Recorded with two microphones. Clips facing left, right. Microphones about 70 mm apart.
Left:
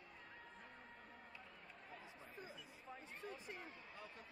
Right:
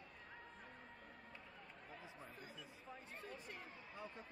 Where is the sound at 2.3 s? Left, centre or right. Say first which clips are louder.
Even; left.